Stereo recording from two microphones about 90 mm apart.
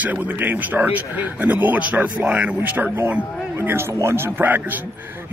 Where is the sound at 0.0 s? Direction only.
20° right (ahead or behind).